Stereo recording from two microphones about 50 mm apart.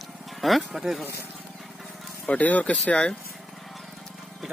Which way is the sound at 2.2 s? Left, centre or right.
Left.